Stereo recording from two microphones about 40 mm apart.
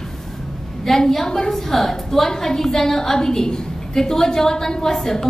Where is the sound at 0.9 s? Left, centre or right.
Centre.